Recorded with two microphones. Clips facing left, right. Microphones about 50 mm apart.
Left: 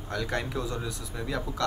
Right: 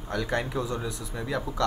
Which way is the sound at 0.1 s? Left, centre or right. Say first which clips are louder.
Right 2 dB; centre.